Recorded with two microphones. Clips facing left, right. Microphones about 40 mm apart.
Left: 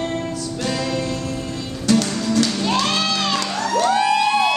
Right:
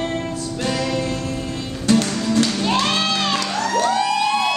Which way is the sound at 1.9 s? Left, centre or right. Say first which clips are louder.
Even; centre.